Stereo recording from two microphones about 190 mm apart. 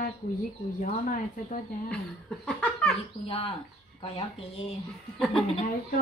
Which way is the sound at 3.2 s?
30° left (ahead or behind).